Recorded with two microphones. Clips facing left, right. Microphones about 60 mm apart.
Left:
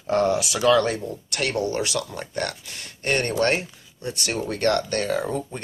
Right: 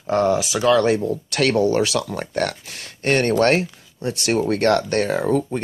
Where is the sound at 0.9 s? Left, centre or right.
Right.